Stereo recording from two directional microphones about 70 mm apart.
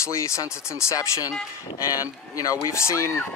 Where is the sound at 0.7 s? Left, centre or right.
Left.